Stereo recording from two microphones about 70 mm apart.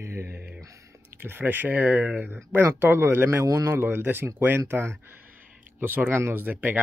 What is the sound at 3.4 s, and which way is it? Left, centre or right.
Speech, right.